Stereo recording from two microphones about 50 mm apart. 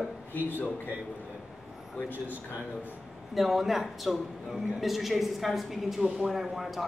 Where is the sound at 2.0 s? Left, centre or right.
Left.